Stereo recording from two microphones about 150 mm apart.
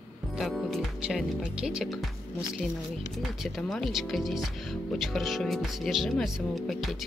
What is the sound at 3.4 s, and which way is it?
Speech, centre (ahead or behind).